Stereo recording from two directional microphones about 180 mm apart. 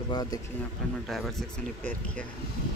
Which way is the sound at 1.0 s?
Centre (ahead or behind).